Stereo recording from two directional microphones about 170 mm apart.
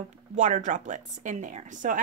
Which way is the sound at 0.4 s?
45° right (ahead or behind).